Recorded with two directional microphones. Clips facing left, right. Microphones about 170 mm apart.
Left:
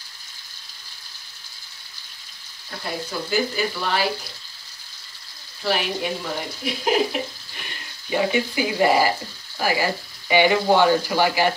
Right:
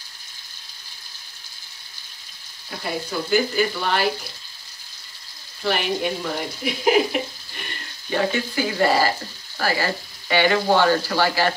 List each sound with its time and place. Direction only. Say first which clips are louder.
2.8 s speech: right 2 dB; centre (ahead or behind)
5.6 s speech: right 1 dB; centre (ahead or behind)
8.1 s speech: left 1 dB; 15° left (ahead or behind)